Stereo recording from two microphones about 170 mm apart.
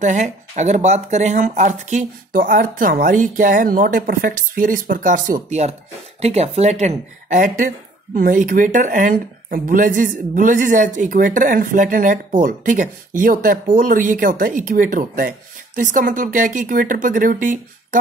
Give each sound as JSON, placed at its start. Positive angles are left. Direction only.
{"t": 0.0, "sound": "speech", "side_deg": -45}